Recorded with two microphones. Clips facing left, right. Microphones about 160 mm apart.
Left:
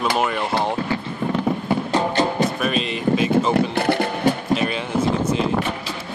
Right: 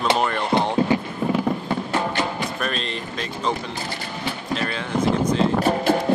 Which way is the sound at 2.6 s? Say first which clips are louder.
Left 6 dB; 5° left (ahead or behind).